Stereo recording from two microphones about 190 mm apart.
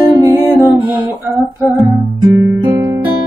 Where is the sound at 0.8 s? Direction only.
10° right (ahead or behind).